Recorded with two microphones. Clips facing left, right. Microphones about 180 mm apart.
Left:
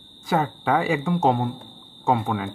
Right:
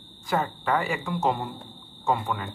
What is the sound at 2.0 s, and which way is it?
Speech, 90° left.